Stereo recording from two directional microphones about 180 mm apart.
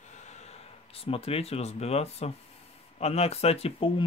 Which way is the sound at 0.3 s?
35° left (ahead or behind).